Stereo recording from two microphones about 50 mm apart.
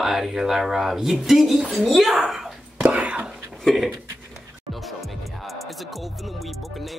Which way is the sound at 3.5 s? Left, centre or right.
Centre.